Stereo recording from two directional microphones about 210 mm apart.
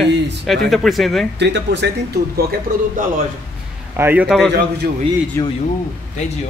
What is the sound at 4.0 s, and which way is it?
Speech, 10° right (ahead or behind).